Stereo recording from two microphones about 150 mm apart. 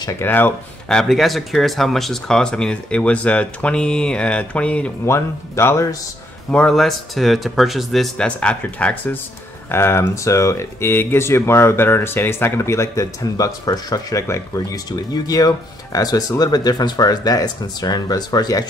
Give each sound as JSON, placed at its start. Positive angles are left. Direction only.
{"t": 0.2, "sound": "speech", "side_deg": 15}
{"t": 0.8, "sound": "speech", "side_deg": 0}
{"t": 6.5, "sound": "speech", "side_deg": 5}